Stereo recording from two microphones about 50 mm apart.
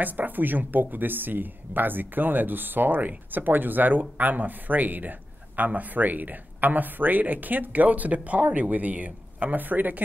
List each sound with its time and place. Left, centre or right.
0.0 s speech: right